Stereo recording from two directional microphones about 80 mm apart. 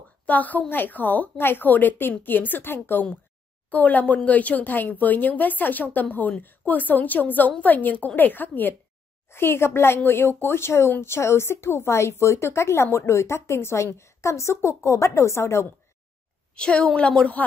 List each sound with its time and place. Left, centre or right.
0.3 s a woman's voice: centre; by 15.7 s left
16.5 s a woman's voice: centre